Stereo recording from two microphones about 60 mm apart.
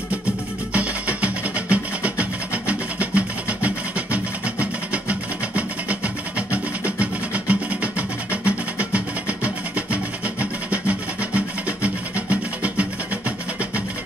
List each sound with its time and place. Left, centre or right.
0.7 s music: right